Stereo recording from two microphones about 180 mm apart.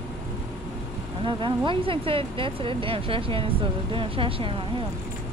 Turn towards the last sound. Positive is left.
turn(degrees=-30)  # may be behind; listen again after turning